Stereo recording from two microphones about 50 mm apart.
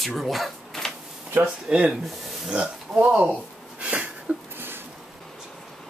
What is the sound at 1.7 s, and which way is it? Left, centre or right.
Speech, centre.